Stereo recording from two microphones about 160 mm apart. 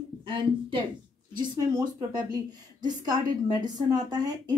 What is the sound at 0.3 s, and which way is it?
A woman's voice, 30° right (ahead or behind).